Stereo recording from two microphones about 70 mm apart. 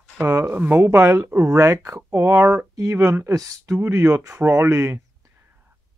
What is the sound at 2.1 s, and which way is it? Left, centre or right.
Speech, right.